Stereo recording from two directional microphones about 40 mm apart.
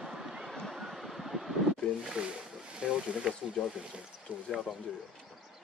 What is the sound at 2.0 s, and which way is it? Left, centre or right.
Speech, right.